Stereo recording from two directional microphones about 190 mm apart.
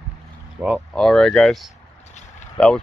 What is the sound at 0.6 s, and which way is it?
Speech, 10° right (ahead or behind).